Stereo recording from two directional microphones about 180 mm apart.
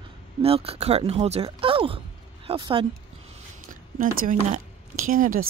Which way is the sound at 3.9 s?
50° right (ahead or behind).